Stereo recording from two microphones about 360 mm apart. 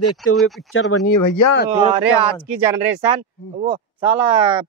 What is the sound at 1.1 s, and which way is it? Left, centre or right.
Speech, left.